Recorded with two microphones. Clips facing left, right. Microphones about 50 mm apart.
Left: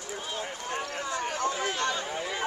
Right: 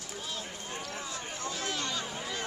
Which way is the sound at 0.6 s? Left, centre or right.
Left.